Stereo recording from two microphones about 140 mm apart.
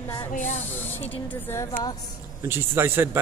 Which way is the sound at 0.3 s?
60° left (ahead or behind).